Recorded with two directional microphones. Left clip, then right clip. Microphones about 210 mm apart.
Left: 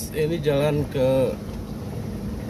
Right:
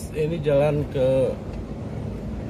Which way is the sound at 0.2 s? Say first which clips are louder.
Right 1 dB; 20° left (ahead or behind).